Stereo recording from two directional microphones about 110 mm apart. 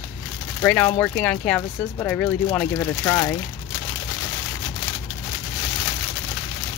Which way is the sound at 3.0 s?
20° left (ahead or behind).